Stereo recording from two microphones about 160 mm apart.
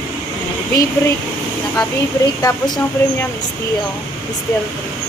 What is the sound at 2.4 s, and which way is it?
Speech, 20° left (ahead or behind).